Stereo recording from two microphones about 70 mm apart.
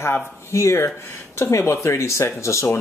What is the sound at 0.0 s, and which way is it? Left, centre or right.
A man's voice, left.